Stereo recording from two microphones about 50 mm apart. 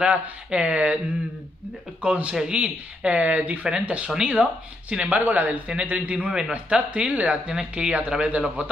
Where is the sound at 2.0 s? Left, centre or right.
Right.